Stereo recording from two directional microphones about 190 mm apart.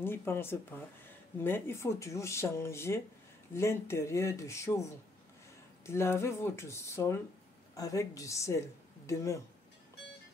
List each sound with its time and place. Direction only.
0.0 s speech: 10° left (ahead or behind)